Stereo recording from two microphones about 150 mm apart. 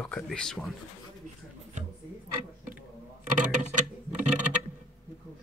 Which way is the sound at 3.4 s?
55° right (ahead or behind).